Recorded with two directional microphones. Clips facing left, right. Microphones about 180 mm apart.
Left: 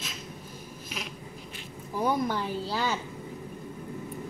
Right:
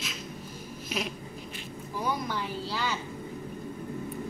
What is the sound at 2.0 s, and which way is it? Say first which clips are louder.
Speech: left 5 dB; 50° left (ahead or behind).